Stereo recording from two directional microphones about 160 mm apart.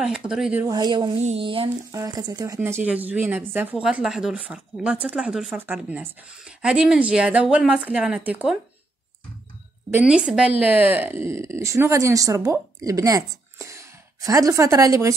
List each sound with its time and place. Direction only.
0.3 s speech: 5° right (ahead or behind)
0.7 s speech: 25° right (ahead or behind)
1.9 s speech: 20° right (ahead or behind)
9.9 s speech: 5° right (ahead or behind)